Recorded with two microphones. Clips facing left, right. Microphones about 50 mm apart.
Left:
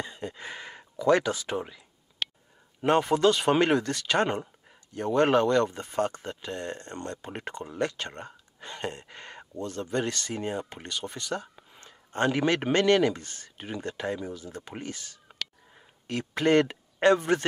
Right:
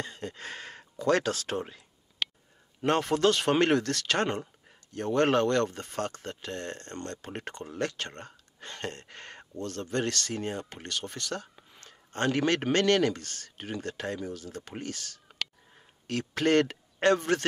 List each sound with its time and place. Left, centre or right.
0.0 s a sound: centre
1.0 s speech: centre
2.8 s speech: centre